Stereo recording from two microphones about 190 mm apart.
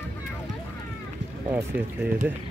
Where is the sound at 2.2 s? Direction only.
5° right (ahead or behind).